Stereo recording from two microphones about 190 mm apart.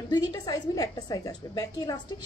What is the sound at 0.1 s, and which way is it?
A woman's voice, 20° left (ahead or behind).